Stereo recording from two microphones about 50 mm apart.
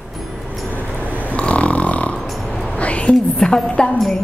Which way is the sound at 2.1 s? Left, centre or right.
Centre.